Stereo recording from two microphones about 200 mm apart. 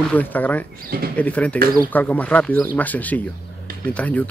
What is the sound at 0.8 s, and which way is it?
Speech, 50° right (ahead or behind).